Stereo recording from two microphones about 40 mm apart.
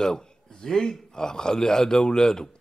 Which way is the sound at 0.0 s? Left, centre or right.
Centre.